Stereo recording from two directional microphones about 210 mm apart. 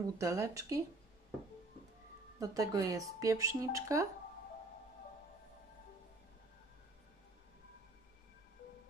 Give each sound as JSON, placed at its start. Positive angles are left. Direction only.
{"t": 0.0, "sound": "speech", "side_deg": -15}
{"t": 2.5, "sound": "speech", "side_deg": -15}